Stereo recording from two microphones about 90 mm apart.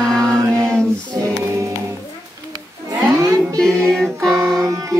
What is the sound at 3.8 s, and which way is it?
Music, 5° left (ahead or behind).